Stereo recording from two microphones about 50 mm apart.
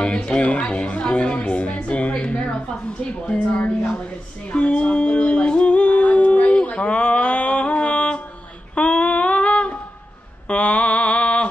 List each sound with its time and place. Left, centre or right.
0.0 s a woman's voice: centre
3.5 s a woman's voice: left
4.5 s humming: left
8.7 s female singing: left
10.5 s mantra: left